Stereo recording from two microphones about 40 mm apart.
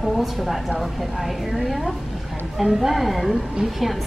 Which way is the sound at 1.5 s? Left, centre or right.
Centre.